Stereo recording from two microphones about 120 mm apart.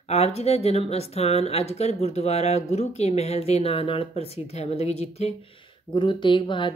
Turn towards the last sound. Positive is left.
turn(degrees=40)  # may be behind; listen again after turning